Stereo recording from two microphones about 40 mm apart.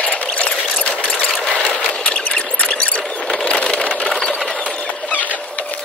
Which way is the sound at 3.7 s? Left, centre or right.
Left.